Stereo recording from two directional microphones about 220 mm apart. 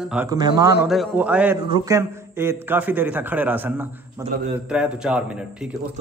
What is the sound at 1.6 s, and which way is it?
A man's voice, 15° right (ahead or behind).